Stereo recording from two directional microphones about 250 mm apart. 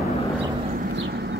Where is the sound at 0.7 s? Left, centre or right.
Right.